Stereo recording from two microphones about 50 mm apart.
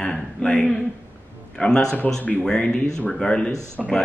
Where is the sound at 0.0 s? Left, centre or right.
Centre.